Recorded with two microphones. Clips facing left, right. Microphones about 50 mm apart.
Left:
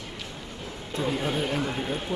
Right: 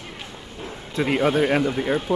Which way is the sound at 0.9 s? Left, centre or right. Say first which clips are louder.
Right 7 dB; right.